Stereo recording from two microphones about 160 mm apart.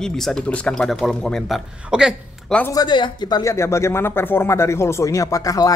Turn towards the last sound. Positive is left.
turn(degrees=20)  # may be behind; listen again after turning